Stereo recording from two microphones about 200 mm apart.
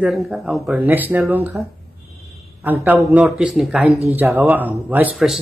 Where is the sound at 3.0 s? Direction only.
5° right (ahead or behind).